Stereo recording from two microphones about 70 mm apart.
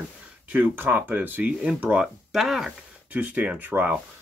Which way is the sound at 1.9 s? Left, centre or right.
Centre.